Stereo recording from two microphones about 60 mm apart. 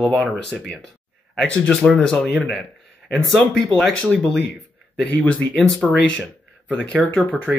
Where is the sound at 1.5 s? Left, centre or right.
Centre.